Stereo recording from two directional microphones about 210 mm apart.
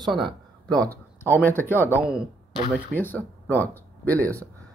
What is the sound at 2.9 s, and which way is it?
Speech, 10° left (ahead or behind).